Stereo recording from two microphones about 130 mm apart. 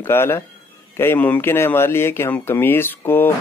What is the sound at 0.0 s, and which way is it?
Speech, 15° left (ahead or behind).